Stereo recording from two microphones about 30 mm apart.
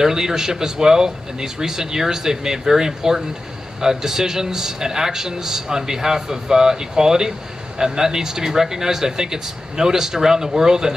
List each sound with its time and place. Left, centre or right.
0.0 s a man's voice: centre